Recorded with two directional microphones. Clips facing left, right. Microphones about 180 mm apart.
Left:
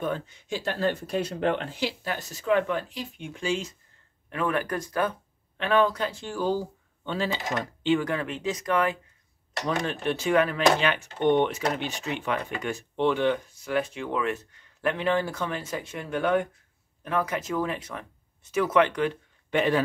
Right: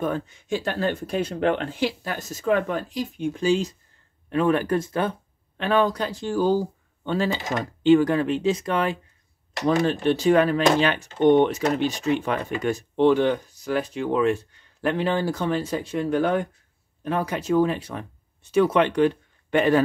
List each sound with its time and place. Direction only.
0.0 s speech: 50° right (ahead or behind); by 5.1 s 25° right (ahead or behind)
5.6 s speech: 35° right (ahead or behind)
19.5 s speech: 45° right (ahead or behind)